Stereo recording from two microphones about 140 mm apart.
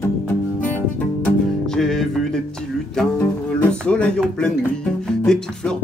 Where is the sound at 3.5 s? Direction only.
10° left (ahead or behind).